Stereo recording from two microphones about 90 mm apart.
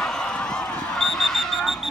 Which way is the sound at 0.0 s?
10° left (ahead or behind).